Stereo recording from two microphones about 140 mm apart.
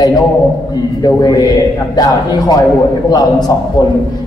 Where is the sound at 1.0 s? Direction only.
30° left (ahead or behind).